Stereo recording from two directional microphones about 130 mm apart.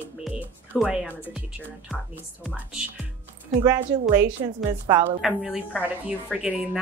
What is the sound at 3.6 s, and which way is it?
Speech, 20° right (ahead or behind).